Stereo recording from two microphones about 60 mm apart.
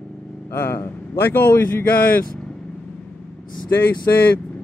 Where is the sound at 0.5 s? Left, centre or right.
Left.